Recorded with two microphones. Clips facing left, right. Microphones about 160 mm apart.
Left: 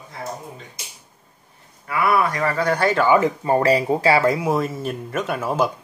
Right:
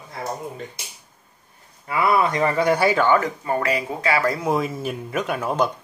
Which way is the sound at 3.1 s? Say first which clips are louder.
Left 5 dB; 25° left (ahead or behind).